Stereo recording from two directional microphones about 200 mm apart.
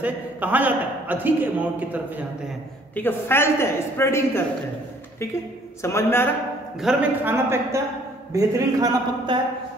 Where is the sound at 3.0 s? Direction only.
10° left (ahead or behind).